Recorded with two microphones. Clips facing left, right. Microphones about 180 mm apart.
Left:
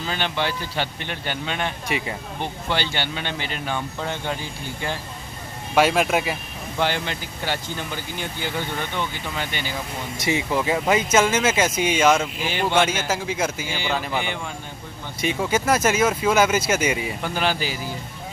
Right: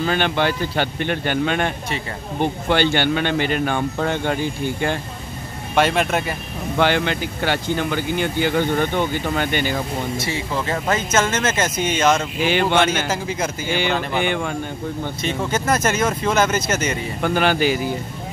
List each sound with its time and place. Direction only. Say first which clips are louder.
0.0 s speech: right 6 dB; 55° right (ahead or behind)
2.7 s speech: right 8 dB; 55° right (ahead or behind)
5.8 s a man's voice: even; 5° left (ahead or behind)
6.8 s speech: right 6 dB; 65° right (ahead or behind)
10.1 s speech: left 1 dB; 15° left (ahead or behind)
12.4 s a man's voice: right 4 dB; 70° right (ahead or behind)
13.1 s a man's voice: right 1 dB; 5° left (ahead or behind)
13.7 s speech: right 5 dB; 65° right (ahead or behind)
15.2 s speech: left 1 dB; 10° left (ahead or behind)
17.2 s speech: right 6 dB; 60° right (ahead or behind)